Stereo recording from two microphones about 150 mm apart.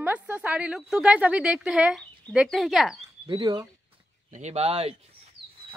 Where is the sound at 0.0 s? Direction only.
10° right (ahead or behind).